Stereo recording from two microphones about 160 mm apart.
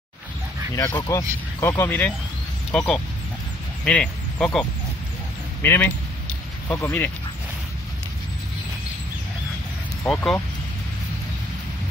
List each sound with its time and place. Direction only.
0.8 s speech: 15° left (ahead or behind)
10.0 s speech: 5° left (ahead or behind)